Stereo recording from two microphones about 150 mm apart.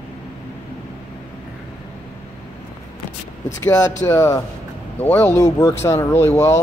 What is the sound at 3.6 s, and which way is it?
A man's voice, 15° left (ahead or behind).